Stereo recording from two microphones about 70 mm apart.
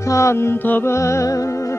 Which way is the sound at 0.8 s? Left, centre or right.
Left.